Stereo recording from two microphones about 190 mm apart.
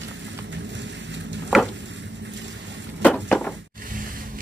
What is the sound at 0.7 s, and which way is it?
Vehicle, 70° right (ahead or behind).